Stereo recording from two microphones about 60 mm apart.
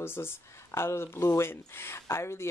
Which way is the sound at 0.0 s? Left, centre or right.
Left.